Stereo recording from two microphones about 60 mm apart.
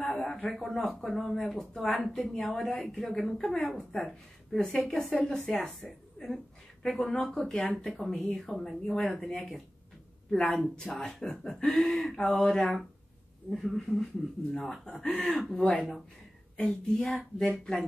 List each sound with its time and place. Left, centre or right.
0.0 s a sound: centre
0.5 s a woman's voice: centre
7.7 s a woman's voice: centre
16.6 s a woman's voice: centre